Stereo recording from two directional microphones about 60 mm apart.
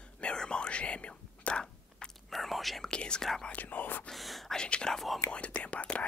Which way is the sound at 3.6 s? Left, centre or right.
Left.